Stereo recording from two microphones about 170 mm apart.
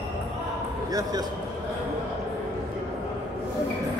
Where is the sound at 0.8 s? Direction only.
20° right (ahead or behind).